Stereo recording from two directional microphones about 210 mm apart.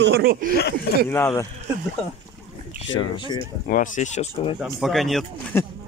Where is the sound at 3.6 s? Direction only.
40° left (ahead or behind).